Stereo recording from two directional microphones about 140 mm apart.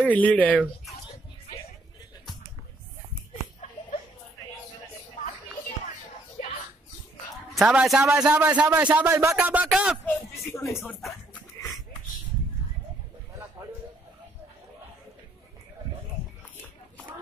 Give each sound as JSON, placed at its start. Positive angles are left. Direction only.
{"t": 0.0, "sound": "speech", "side_deg": 10}
{"t": 7.5, "sound": "a man's voice", "side_deg": -5}
{"t": 9.7, "sound": "a sound", "side_deg": -5}
{"t": 10.0, "sound": "speech", "side_deg": 20}